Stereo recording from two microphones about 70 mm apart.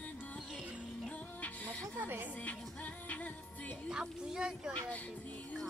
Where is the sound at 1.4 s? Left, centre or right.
Left.